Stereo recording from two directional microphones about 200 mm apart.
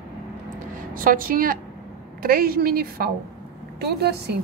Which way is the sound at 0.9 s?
45° right (ahead or behind).